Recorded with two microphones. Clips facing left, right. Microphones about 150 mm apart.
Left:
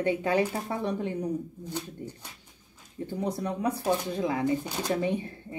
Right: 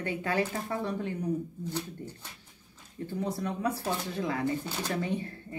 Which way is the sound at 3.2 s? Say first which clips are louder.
Left 2 dB; 20° left (ahead or behind).